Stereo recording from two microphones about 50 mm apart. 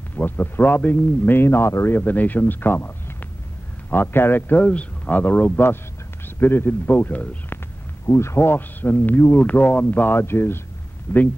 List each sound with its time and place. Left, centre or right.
0.1 s speech: left
2.0 s speech: left
4.6 s speech: left
5.2 s speech: left
8.1 s speech: left
11.1 s speech: left